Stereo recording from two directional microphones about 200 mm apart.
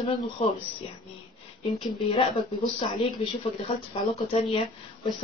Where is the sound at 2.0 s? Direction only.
25° left (ahead or behind).